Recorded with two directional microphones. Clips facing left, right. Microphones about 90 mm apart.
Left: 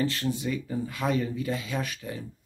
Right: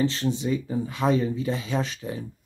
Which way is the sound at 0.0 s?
20° right (ahead or behind).